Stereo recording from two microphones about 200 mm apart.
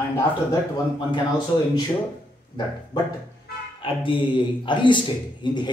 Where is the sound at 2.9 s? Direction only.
20° left (ahead or behind).